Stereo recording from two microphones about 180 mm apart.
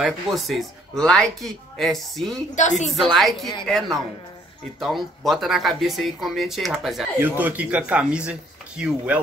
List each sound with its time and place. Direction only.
0.0 s speech: centre (ahead or behind)
2.6 s a woman's voice: 40° left (ahead or behind)
2.9 s speech: centre (ahead or behind)